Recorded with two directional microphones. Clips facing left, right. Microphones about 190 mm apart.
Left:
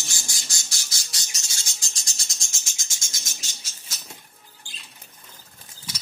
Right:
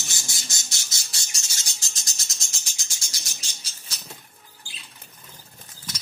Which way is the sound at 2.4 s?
35° right (ahead or behind).